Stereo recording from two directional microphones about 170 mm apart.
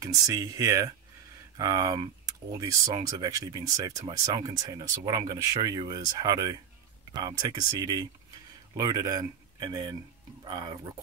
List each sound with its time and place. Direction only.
0.0 s speech: 20° right (ahead or behind)